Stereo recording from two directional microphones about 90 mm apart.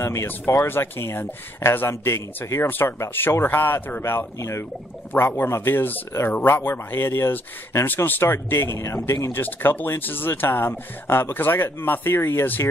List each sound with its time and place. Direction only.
0.0 s a man's voice: 30° left (ahead or behind)